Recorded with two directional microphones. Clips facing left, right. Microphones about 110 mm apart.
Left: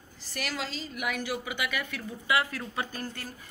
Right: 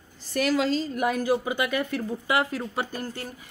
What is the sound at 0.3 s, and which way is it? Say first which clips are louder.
A woman's voice: right 12 dB; 40° right (ahead or behind).